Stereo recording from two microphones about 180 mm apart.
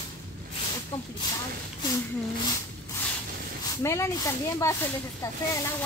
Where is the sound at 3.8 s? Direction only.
15° left (ahead or behind).